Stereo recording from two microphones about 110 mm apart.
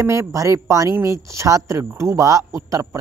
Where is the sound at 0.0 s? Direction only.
25° right (ahead or behind).